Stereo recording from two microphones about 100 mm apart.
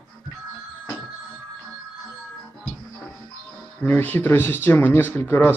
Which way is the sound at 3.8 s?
20° left (ahead or behind).